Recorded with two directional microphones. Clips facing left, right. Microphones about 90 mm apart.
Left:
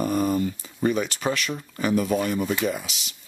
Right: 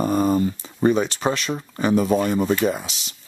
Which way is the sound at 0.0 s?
30° right (ahead or behind).